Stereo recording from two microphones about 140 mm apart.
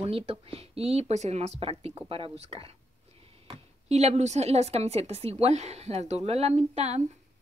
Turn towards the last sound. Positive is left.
turn(degrees=-50)  # may be behind; listen again after turning